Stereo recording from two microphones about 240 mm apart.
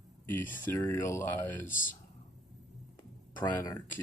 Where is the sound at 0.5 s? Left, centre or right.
Centre.